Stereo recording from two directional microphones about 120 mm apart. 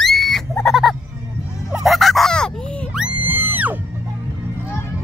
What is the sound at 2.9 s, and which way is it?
Music, 10° right (ahead or behind).